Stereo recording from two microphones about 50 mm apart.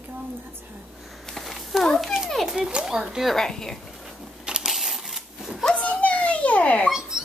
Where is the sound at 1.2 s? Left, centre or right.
Centre.